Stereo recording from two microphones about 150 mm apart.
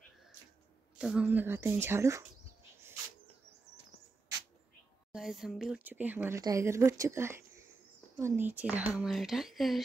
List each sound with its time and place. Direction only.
0.9 s a woman's voice: 5° right (ahead or behind)
5.1 s a woman's voice: 5° right (ahead or behind)